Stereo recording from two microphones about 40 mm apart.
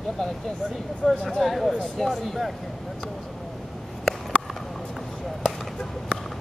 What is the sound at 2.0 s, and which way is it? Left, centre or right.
Speech, centre.